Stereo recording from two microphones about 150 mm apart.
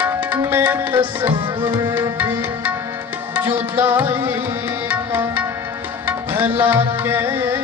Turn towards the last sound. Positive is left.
turn(degrees=-15)  # may be behind; listen again after turning